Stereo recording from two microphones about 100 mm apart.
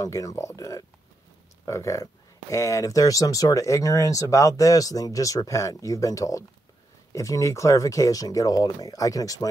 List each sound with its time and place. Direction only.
0.0 s speech: 35° left (ahead or behind)